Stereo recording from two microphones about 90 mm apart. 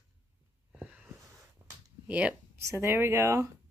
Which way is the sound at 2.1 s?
15° right (ahead or behind).